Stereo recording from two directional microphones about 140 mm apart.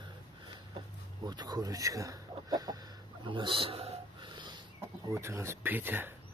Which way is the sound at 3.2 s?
35° right (ahead or behind).